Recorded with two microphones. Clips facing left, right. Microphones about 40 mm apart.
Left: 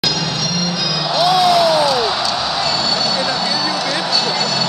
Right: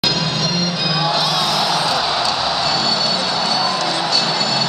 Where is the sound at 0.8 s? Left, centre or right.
Right.